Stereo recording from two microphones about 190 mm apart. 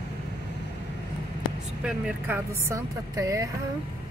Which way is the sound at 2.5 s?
15° right (ahead or behind).